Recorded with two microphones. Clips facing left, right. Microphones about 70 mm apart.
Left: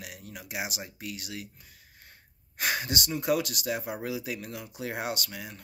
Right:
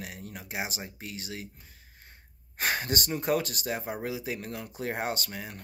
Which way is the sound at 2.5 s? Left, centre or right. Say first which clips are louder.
Right 1 dB; right.